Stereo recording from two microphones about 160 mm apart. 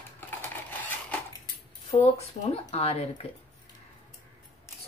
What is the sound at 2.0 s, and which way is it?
Speech, 40° left (ahead or behind).